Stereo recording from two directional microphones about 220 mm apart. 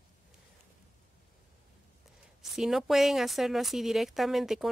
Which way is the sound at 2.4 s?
Centre (ahead or behind).